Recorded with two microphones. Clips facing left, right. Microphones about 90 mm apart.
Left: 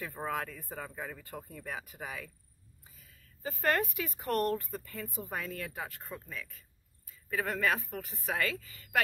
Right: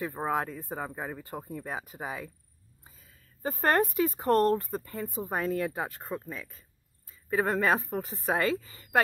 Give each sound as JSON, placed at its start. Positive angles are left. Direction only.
{"t": 0.0, "sound": "speech", "side_deg": -25}